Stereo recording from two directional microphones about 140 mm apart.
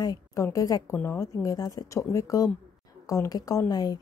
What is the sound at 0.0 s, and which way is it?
A woman's voice, 25° left (ahead or behind).